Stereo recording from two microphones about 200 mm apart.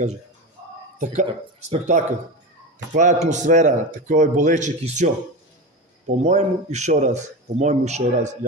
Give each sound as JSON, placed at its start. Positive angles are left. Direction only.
{"t": 0.9, "sound": "speech", "side_deg": -35}
{"t": 6.2, "sound": "speech", "side_deg": -35}